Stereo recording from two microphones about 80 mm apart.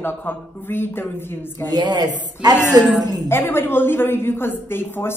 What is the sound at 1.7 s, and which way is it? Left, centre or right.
Speech, right.